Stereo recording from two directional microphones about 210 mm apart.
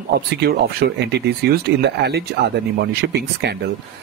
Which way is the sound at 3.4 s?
55° right (ahead or behind).